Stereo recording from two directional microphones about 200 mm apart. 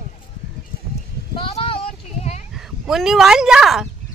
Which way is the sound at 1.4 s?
30° left (ahead or behind).